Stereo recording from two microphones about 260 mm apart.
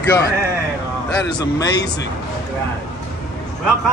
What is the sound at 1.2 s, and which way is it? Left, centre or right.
Speech, centre.